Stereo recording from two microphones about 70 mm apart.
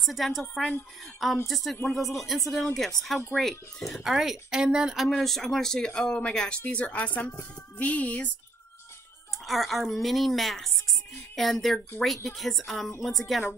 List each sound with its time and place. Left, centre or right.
0.0 s speech: centre
5.0 s speech: centre
9.4 s speech: centre